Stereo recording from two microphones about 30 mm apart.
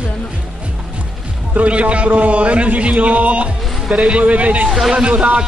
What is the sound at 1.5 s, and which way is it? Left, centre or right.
Speech, right.